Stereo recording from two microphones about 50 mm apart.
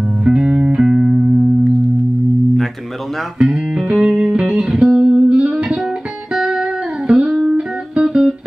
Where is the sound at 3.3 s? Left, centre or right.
Centre.